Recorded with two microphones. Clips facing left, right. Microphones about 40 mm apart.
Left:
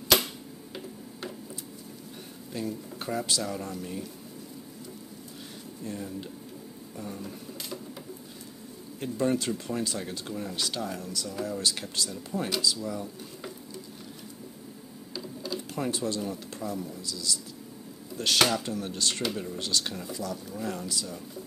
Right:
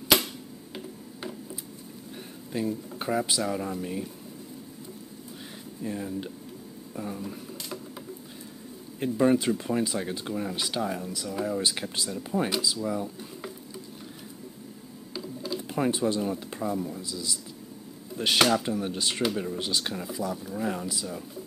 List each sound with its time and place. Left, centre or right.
2.5 s speech: centre
5.9 s speech: centre
9.0 s speech: centre
15.4 s typing: centre
15.8 s speech: right